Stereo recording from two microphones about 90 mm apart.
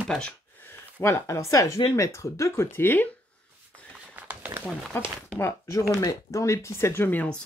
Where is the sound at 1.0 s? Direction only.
30° left (ahead or behind).